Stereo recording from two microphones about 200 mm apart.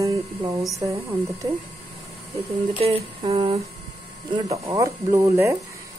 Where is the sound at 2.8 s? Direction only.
30° right (ahead or behind).